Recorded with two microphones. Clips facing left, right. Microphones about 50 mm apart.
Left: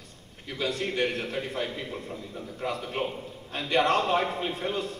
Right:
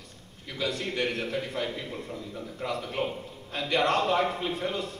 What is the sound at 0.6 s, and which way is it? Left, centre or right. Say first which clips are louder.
A man's voice: left 2 dB; left.